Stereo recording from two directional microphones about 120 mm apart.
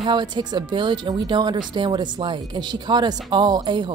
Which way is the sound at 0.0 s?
35° right (ahead or behind).